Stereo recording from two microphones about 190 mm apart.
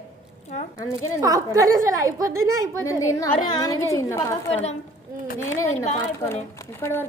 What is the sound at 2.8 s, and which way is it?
A woman's voice, 15° left (ahead or behind).